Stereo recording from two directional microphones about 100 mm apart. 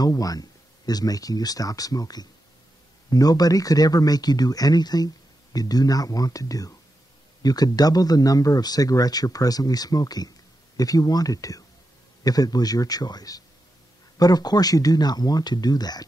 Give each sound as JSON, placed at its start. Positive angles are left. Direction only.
{"t": 0.0, "sound": "speech", "side_deg": 40}